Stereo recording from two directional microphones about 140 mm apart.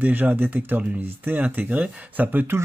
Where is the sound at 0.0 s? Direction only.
15° right (ahead or behind).